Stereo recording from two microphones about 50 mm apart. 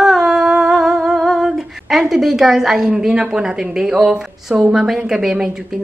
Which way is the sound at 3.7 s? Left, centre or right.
Centre.